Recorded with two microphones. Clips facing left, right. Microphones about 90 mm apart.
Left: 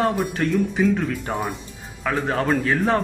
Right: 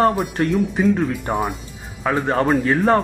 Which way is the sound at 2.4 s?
10° right (ahead or behind).